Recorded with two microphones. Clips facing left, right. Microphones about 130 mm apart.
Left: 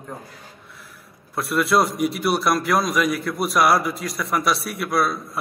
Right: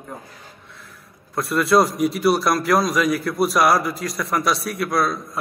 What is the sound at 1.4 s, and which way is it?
A man's voice, centre (ahead or behind).